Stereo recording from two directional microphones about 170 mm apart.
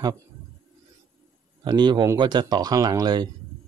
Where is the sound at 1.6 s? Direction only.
25° right (ahead or behind).